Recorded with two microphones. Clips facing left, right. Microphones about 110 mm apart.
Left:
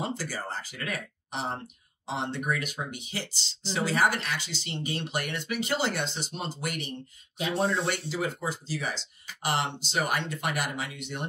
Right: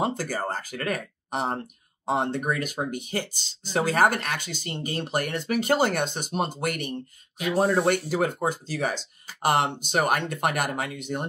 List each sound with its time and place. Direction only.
0.0 s speech: 50° right (ahead or behind)
7.5 s speech: 40° right (ahead or behind)
8.1 s speech: 50° right (ahead or behind)